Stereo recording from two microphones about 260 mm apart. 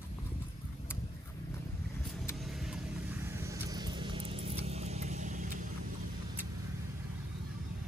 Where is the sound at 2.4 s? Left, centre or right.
Centre; by 5.5 s right.